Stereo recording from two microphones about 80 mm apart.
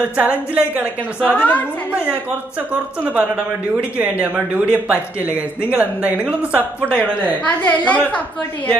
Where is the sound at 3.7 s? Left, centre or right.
Centre.